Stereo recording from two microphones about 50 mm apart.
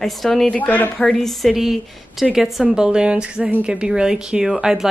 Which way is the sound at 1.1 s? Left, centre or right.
Centre.